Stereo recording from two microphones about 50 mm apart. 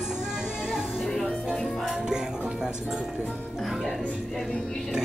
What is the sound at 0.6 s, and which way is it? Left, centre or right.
Music, centre.